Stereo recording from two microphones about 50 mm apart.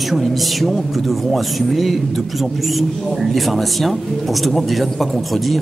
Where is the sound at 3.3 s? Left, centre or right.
Centre.